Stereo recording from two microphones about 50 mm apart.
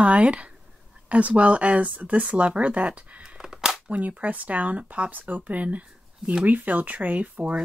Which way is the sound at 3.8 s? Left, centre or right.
Right.